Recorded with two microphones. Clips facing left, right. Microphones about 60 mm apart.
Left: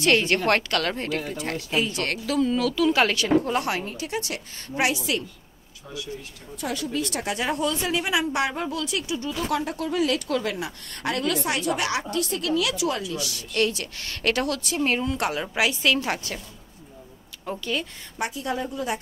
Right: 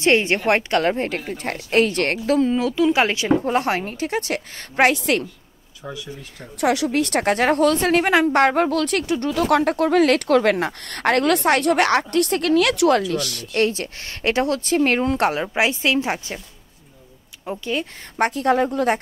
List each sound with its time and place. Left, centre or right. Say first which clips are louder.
0.0 s a woman's voice: right 3 dB; right
2.0 s a woman's voice: right 5 dB; right
6.6 s a woman's voice: right 9 dB; right
9.3 s a woman's voice: right 9 dB; right
17.5 s a woman's voice: right 3 dB; right
18.1 s a woman's voice: right 10 dB; right